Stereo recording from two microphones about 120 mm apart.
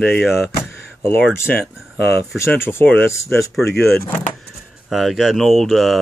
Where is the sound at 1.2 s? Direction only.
15° left (ahead or behind).